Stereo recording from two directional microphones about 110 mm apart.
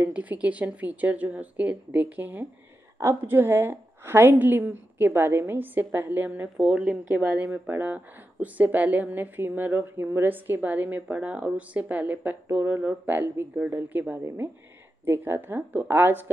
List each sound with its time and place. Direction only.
0.0 s a woman's voice: 15° right (ahead or behind)
6.5 s a woman's voice: 5° right (ahead or behind)